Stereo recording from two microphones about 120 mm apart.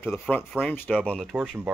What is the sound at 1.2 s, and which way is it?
Speech, centre (ahead or behind).